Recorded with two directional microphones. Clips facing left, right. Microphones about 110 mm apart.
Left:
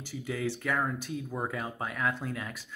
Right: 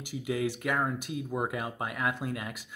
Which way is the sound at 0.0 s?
15° right (ahead or behind).